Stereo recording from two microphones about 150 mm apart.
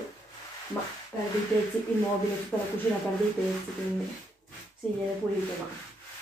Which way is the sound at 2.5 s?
10° left (ahead or behind).